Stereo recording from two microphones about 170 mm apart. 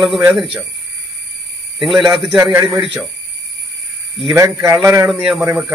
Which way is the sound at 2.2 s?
Centre (ahead or behind).